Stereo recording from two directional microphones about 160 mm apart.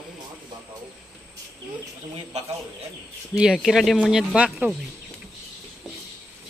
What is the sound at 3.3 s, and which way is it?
Speech, 5° right (ahead or behind).